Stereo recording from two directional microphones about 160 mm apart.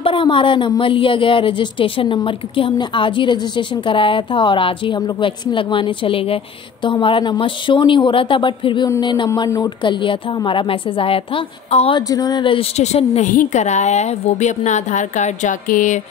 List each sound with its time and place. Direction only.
0.0 s a woman's voice: 30° left (ahead or behind)
12.1 s a woman's voice: 25° left (ahead or behind); by 13.3 s 40° left (ahead or behind)
13.3 s a woman's voice: 50° left (ahead or behind)